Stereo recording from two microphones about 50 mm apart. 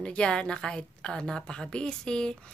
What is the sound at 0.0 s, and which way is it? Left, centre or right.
A woman's voice, centre.